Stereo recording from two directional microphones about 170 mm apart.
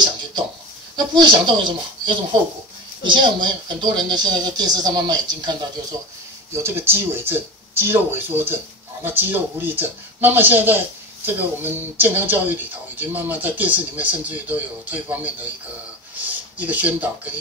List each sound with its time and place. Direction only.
0.9 s speech: 25° right (ahead or behind); by 17.4 s 10° right (ahead or behind)